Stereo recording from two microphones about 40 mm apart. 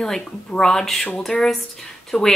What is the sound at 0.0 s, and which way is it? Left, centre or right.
A woman's voice, centre.